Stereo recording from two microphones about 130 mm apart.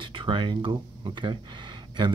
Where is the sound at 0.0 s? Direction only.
40° right (ahead or behind).